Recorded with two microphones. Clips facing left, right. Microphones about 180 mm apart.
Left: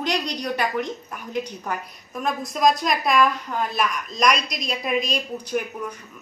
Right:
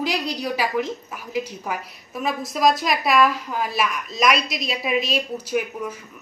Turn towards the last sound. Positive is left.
turn(degrees=-5)  # may be behind; listen again after turning